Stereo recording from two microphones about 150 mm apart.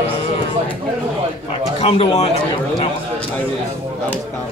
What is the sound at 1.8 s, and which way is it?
A man's voice, 40° left (ahead or behind).